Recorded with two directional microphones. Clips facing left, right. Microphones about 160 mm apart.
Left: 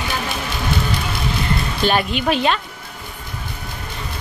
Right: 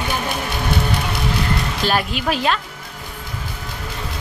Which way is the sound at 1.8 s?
Centre (ahead or behind).